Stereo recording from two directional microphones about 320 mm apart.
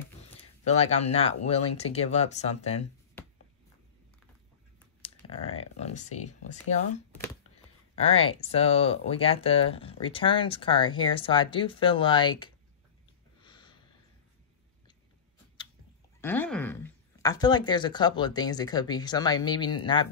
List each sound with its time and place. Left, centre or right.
0.7 s speech: centre
5.0 s computer keyboard: centre
8.1 s speech: centre
13.4 s a sound: centre
16.2 s speech: centre